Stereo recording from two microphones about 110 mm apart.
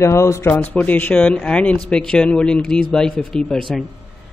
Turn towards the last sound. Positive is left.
turn(degrees=5)  # may be behind; listen again after turning